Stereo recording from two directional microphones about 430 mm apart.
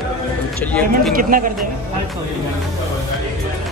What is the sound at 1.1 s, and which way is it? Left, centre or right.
Speech, centre.